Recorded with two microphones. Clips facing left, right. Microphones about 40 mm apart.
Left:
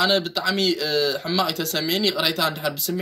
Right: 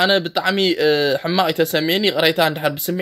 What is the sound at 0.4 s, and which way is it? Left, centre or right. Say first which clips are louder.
Speech: right 5 dB; right.